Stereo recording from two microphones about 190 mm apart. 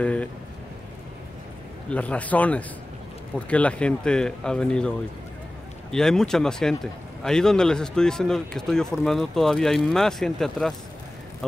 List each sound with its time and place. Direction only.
0.0 s speech: 5° left (ahead or behind)
1.9 s a man's voice: 5° left (ahead or behind)